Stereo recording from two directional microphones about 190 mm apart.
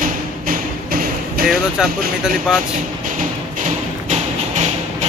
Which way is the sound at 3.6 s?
40° right (ahead or behind).